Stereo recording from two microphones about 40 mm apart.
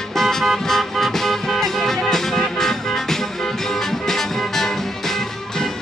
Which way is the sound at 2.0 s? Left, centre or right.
Centre.